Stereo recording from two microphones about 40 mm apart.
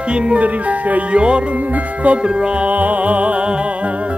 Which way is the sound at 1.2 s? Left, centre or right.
Right.